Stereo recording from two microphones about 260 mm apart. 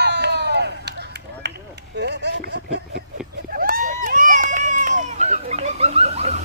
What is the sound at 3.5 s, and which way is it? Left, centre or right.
Run, right.